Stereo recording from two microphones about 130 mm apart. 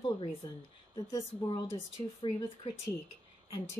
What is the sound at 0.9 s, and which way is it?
A woman's voice, 35° left (ahead or behind).